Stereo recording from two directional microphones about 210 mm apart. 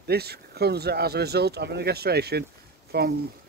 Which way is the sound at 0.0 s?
50° right (ahead or behind).